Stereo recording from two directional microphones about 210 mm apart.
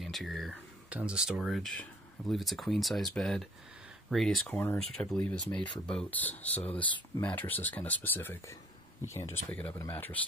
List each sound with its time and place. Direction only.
0.0 s speech: centre (ahead or behind)